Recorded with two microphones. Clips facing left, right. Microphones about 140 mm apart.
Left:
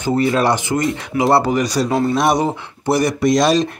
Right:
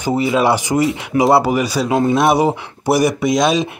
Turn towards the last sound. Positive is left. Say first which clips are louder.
# left 1 dB
turn(degrees=0)  # may be behind; listen again after turning